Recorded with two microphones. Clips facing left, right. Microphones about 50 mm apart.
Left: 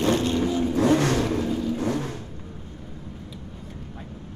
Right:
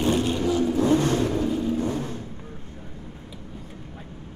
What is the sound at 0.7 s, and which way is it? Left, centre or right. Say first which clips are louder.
Vehicle: left 3 dB; left.